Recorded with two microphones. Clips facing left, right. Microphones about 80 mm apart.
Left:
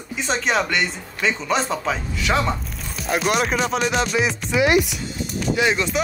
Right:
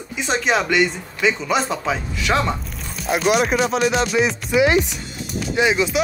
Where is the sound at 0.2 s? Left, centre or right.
Centre.